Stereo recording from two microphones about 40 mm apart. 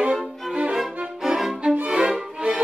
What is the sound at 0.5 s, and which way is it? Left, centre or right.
Music, right.